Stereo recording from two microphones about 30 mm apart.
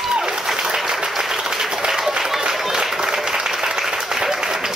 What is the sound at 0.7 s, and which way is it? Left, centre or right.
Applause, centre.